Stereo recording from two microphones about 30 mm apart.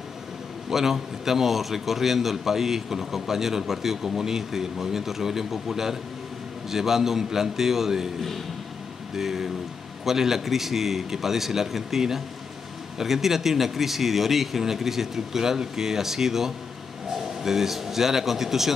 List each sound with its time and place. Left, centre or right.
0.7 s a man's voice: centre
9.1 s a man's voice: centre